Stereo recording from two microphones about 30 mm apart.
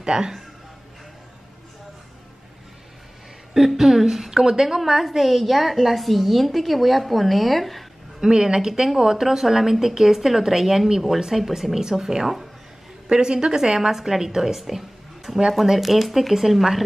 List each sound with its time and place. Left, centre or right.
0.0 s speech: right
3.5 s a woman's voice: centre
8.2 s a woman's voice: right
8.5 s a woman's voice: centre
13.1 s a woman's voice: right
13.7 s a woman's voice: centre